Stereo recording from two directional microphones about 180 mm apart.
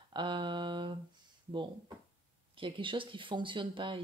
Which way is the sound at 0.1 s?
25° right (ahead or behind).